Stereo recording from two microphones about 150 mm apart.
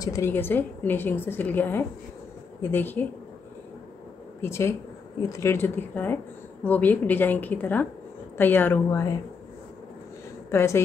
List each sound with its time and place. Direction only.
0.0 s a woman's voice: 20° left (ahead or behind)
4.4 s a woman's voice: 15° left (ahead or behind)
10.5 s a woman's voice: 20° left (ahead or behind)